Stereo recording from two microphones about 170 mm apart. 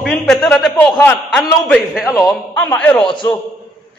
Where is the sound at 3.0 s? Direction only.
30° left (ahead or behind).